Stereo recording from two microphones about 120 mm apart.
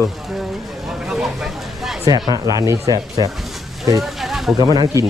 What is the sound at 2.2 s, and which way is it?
Speech, 30° right (ahead or behind).